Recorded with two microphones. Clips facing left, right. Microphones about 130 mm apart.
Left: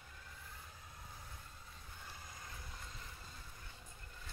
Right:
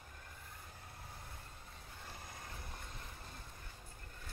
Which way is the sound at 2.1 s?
60° right (ahead or behind).